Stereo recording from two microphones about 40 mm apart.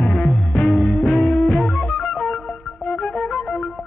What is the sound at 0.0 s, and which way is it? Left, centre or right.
Music, left.